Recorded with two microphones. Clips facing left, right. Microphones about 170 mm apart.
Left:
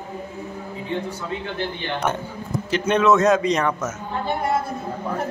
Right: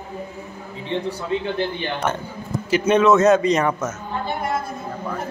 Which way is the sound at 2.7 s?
5° right (ahead or behind).